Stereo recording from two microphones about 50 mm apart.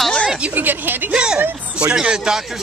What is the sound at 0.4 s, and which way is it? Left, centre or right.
Speech, right.